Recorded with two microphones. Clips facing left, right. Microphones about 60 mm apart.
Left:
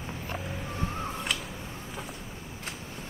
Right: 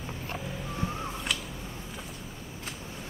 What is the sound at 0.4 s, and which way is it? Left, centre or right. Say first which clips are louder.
Vehicle: left 1 dB; centre.